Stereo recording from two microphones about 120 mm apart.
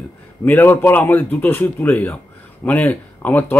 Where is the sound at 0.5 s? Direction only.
15° left (ahead or behind).